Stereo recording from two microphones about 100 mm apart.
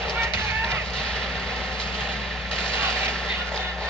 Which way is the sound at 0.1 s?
30° right (ahead or behind).